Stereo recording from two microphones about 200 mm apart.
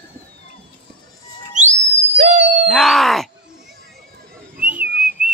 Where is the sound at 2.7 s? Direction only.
Centre (ahead or behind).